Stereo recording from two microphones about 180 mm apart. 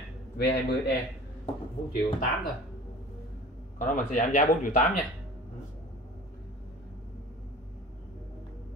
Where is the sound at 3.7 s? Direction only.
45° left (ahead or behind).